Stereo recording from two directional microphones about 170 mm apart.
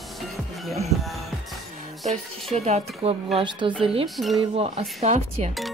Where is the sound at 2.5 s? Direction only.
40° right (ahead or behind).